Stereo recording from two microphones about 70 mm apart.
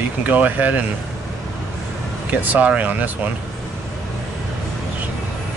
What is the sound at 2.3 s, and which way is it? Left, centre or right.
Speech, right.